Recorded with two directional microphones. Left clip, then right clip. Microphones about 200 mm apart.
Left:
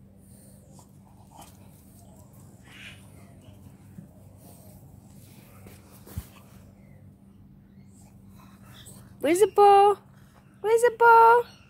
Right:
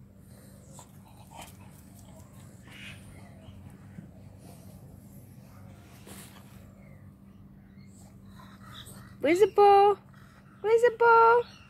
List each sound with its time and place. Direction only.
8.7 s dog: 15° left (ahead or behind)
10.6 s speech: 15° left (ahead or behind)